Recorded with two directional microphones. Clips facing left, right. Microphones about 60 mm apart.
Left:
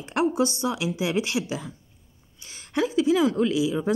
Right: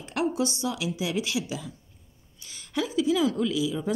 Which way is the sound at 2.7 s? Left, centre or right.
Left.